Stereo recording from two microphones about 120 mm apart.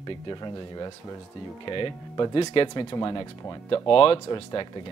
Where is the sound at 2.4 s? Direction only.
50° left (ahead or behind).